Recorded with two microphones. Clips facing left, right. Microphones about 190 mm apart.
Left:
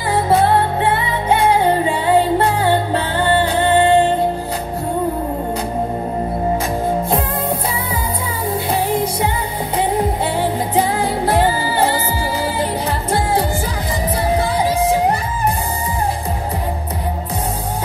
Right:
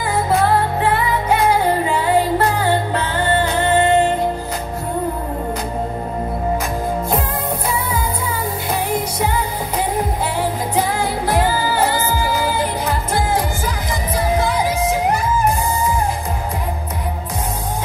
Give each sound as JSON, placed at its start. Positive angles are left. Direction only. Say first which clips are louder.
{"t": 0.1, "sound": "music", "louder": "left 3 dB", "side_deg": 30}
{"t": 11.0, "sound": "music", "louder": "left 2 dB", "side_deg": 30}